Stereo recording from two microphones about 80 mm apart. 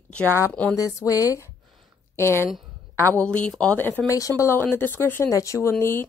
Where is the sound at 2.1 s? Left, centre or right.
Left.